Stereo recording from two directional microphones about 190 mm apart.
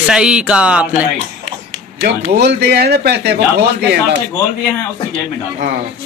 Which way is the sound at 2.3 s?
60° right (ahead or behind).